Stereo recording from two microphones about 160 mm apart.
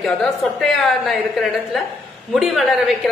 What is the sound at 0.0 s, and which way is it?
A woman's voice, 5° left (ahead or behind).